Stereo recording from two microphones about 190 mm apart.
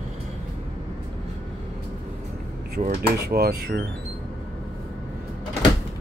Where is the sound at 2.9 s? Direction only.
55° right (ahead or behind).